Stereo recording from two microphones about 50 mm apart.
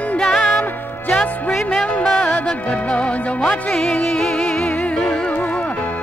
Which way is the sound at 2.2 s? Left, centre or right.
Left.